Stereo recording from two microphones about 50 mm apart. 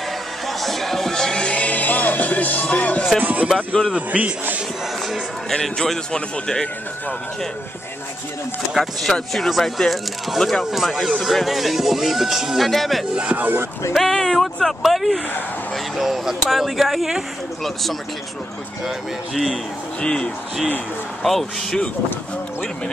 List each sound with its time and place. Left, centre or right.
0.5 s music: centre; by 3.1 s left
3.2 s a man's voice: right
5.5 s speech: centre
8.7 s speech: centre
13.1 s speech: right
13.4 s speech: right
13.9 s speech: centre
18.9 s speech: centre
20.0 s speech: centre
21.2 s speech: centre